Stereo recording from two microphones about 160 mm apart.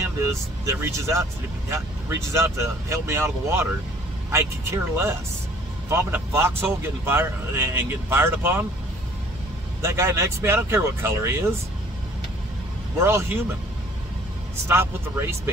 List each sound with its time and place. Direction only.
0.0 s speech: 20° right (ahead or behind)
9.8 s speech: 15° right (ahead or behind)
13.0 s speech: 15° right (ahead or behind)
14.7 s speech: 15° right (ahead or behind)